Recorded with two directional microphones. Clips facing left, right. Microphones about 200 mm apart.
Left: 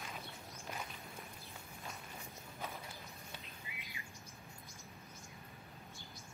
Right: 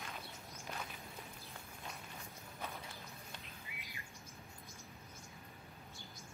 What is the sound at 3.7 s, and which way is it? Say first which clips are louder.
Bird: left 1 dB; 55° right (ahead or behind).